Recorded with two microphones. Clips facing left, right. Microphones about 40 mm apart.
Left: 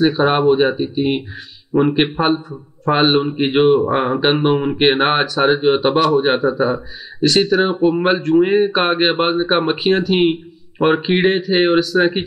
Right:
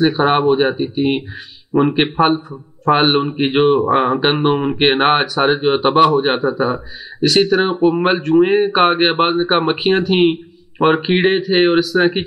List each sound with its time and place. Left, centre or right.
0.0 s speech: centre
5.9 s a man's voice: centre
6.1 s speech: centre